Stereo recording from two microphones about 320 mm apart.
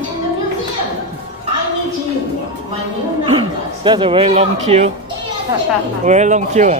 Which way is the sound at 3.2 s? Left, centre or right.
Centre.